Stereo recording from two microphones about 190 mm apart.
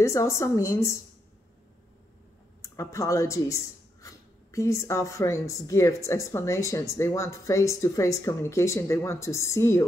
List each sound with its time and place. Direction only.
0.0 s a woman's voice: 15° left (ahead or behind)
2.6 s a woman's voice: 15° left (ahead or behind)